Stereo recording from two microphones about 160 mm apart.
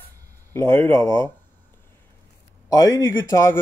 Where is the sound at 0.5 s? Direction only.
15° left (ahead or behind).